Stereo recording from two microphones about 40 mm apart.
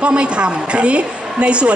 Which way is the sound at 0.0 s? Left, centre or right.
Right.